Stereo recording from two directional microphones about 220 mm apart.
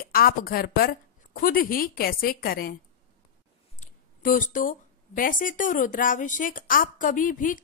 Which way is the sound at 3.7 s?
35° left (ahead or behind).